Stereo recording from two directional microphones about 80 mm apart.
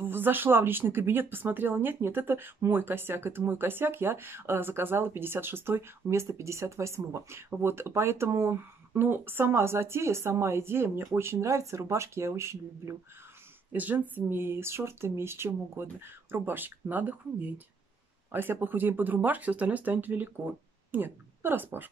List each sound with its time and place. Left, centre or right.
0.0 s speech: right
13.7 s a woman's voice: right